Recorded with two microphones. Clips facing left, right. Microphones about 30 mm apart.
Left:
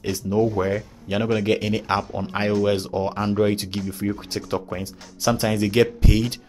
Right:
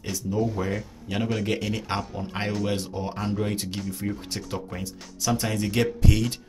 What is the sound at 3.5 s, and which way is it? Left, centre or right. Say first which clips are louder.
Speech: left 4 dB; left.